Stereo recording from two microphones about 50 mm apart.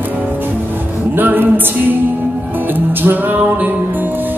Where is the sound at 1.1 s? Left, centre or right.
Right.